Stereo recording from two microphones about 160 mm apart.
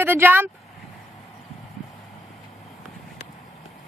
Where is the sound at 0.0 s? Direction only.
10° right (ahead or behind).